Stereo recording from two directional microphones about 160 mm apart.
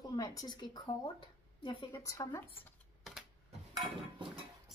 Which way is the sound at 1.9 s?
20° left (ahead or behind).